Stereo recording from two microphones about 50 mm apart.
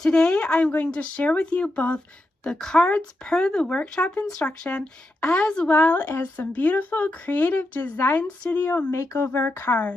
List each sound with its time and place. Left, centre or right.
0.0 s a woman's voice: centre
2.4 s speech: centre
5.7 s speech: left
8.9 s speech: left
9.7 s speech: left